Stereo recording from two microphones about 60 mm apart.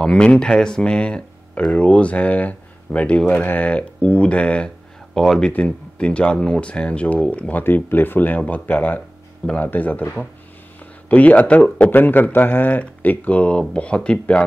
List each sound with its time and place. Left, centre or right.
0.0 s speech: centre
5.5 s speech: left
11.1 s speech: left